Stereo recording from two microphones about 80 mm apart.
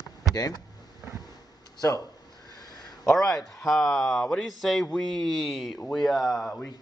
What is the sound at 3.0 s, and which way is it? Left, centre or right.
Speech, centre.